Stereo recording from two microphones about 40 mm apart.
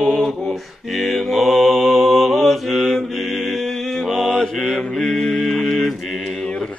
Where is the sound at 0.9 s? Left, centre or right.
Centre.